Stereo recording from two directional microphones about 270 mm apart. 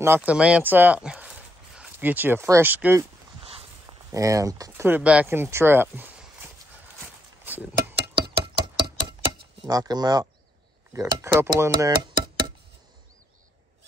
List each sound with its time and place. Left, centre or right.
0.0 s speech: centre
4.1 s speech: centre
8.1 s a sound: right
9.7 s speech: centre